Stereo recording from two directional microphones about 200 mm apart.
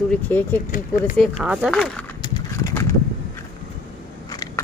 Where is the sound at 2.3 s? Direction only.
15° left (ahead or behind).